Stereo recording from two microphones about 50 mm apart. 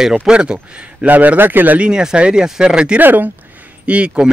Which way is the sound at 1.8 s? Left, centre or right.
Centre.